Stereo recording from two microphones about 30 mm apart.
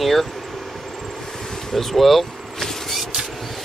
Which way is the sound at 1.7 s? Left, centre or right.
Centre.